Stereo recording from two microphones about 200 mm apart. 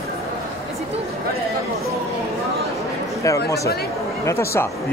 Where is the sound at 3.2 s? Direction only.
15° left (ahead or behind).